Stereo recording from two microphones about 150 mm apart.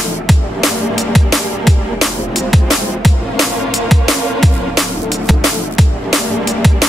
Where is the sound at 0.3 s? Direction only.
Centre (ahead or behind).